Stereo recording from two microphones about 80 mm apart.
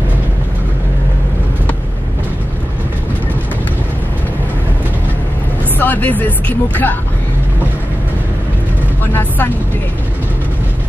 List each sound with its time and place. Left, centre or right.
5.8 s speech: left
9.0 s speech: left